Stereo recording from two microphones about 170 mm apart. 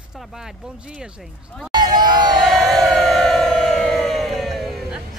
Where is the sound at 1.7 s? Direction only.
25° right (ahead or behind).